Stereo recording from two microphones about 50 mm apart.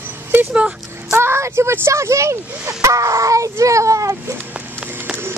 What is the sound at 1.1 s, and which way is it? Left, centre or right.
Speech, right.